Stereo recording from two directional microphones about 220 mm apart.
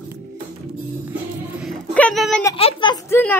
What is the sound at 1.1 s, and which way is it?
Music, 10° right (ahead or behind).